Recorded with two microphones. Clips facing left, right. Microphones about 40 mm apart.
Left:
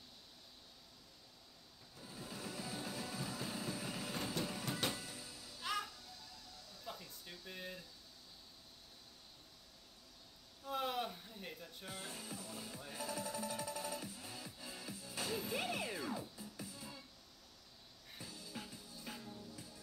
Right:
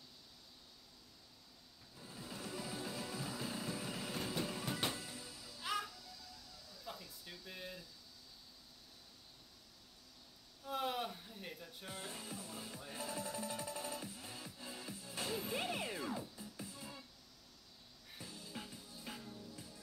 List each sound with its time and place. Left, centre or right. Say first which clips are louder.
2.0 s music: even; centre
3.8 s train: even; centre
4.8 s music: even; centre
5.9 s music: right 1 dB; left
7.2 s a sound: left 1 dB; centre
10.6 s music: even; centre
18.3 s music: right 1 dB; centre
18.6 s music: even; centre